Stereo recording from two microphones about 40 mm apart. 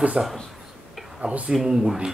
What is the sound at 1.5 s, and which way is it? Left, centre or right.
Speech, centre.